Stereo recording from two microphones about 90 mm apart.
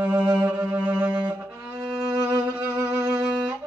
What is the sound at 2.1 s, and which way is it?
Violin, 45° right (ahead or behind).